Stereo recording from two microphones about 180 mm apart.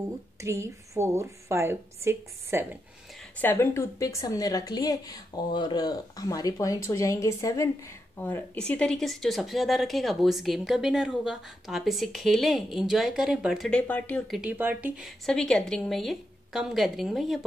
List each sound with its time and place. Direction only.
0.4 s a woman's voice: 15° right (ahead or behind)
3.2 s a woman's voice: 10° left (ahead or behind)